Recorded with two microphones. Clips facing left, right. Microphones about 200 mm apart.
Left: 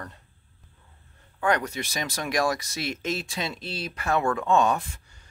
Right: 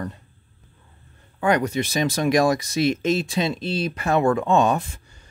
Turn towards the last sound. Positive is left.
turn(degrees=-25)  # may be behind; listen again after turning